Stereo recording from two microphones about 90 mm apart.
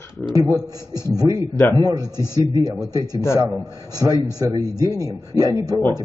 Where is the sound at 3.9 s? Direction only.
40° right (ahead or behind).